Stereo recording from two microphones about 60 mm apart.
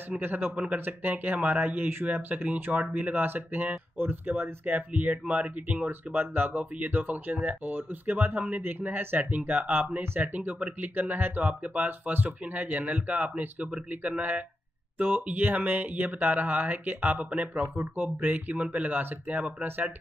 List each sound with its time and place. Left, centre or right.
0.1 s speech: right
5.9 s speech: right